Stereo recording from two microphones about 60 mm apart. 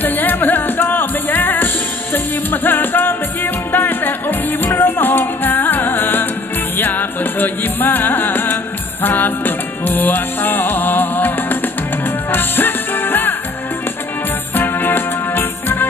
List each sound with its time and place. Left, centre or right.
0.0 s music: left
14.5 s music: left